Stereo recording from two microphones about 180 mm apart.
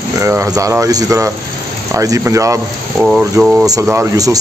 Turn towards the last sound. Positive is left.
turn(degrees=-5)  # may be behind; listen again after turning